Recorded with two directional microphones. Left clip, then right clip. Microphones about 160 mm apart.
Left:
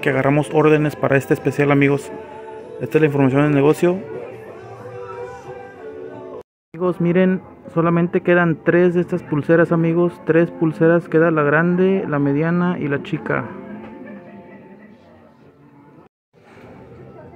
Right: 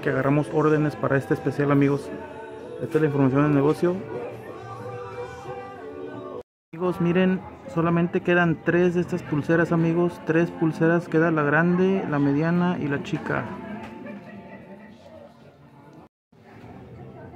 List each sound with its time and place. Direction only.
0.0 s a man's voice: 20° left (ahead or behind)
6.8 s speech: 15° left (ahead or behind)